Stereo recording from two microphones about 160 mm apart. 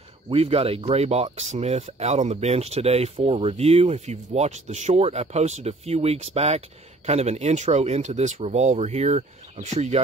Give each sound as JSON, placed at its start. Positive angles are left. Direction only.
{"t": 0.3, "sound": "speech", "side_deg": -40}